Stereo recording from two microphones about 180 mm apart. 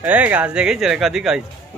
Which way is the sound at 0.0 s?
10° right (ahead or behind).